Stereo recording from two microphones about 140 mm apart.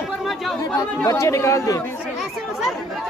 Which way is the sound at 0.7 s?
25° left (ahead or behind).